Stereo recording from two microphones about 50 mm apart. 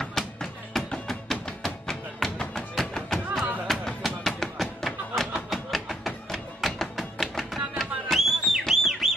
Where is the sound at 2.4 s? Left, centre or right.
Centre.